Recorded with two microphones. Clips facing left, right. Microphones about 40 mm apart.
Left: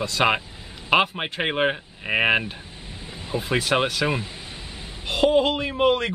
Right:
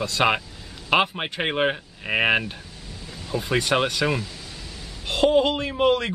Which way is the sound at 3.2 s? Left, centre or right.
Left.